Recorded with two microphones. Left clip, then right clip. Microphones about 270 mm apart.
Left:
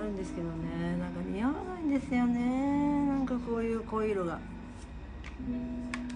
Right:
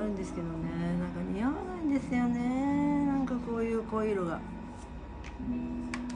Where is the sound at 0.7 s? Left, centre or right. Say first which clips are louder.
Even; centre.